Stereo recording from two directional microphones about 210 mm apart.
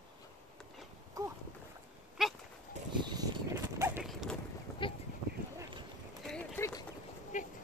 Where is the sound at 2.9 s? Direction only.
20° right (ahead or behind).